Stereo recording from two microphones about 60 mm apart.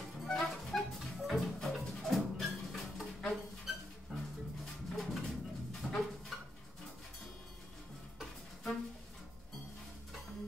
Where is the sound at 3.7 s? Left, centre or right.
Centre.